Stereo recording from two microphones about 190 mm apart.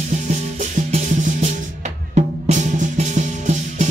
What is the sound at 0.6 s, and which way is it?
Music, 40° right (ahead or behind).